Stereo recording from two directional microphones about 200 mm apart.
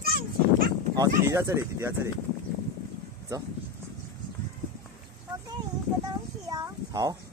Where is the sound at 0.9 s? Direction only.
15° right (ahead or behind).